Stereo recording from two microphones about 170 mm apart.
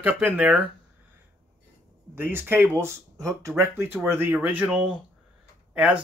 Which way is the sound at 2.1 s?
15° right (ahead or behind).